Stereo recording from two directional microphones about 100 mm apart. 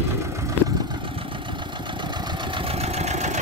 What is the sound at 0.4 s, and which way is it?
Vehicle, 35° right (ahead or behind).